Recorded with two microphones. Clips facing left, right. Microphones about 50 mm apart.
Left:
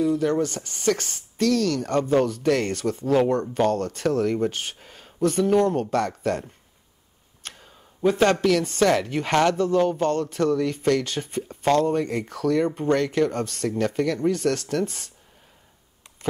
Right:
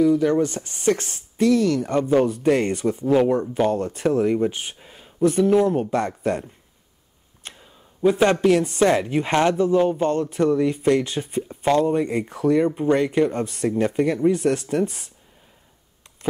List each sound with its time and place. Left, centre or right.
0.2 s speech: right; by 5.9 s centre
5.9 s speech: centre
7.6 s a sound: centre
8.5 s speech: right